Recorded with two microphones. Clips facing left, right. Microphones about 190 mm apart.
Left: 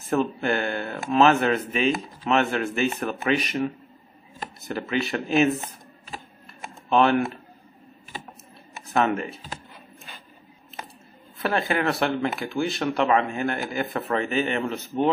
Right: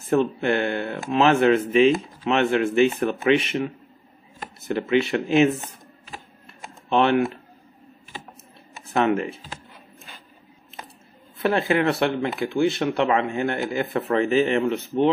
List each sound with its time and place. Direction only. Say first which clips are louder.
0.1 s speech: right 3 dB; 25° right (ahead or behind)
6.9 s speech: even; 25° right (ahead or behind)
8.9 s speech: right 2 dB; 30° right (ahead or behind)
11.3 s speech: right 4 dB; 25° right (ahead or behind)